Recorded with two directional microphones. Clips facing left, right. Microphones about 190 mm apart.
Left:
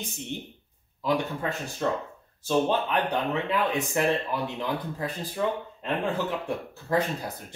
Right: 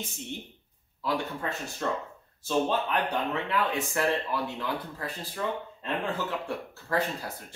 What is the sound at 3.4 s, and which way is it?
Speech, 20° left (ahead or behind).